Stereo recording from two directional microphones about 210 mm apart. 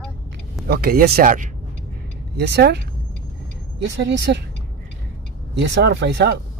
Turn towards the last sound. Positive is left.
turn(degrees=-55)  # may be behind; listen again after turning